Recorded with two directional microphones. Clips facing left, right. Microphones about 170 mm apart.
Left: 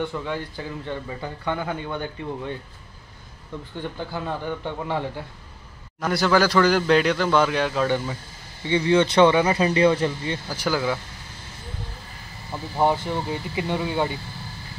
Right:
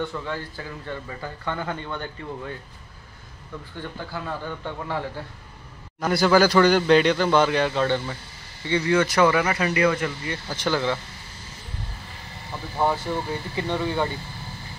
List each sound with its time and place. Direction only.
0.0 s speech: 15° left (ahead or behind)
4.1 s speech: 20° left (ahead or behind)
5.9 s a man's voice: centre (ahead or behind)
8.6 s speech: 20° left (ahead or behind)
10.5 s speech: 5° left (ahead or behind)
12.7 s speech: 15° left (ahead or behind)